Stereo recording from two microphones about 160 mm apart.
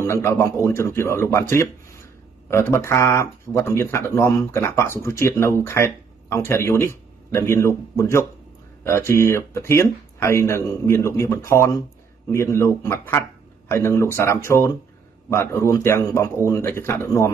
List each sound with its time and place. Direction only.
0.0 s speech: 15° left (ahead or behind)